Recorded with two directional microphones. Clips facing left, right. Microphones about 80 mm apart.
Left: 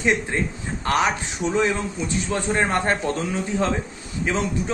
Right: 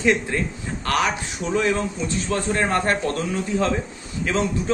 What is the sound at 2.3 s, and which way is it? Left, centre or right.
Speech, left.